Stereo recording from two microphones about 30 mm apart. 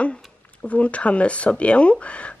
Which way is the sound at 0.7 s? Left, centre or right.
Left.